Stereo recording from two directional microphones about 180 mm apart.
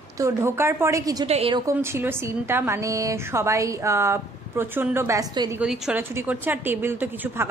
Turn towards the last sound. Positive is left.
turn(degrees=-10)  # may be behind; listen again after turning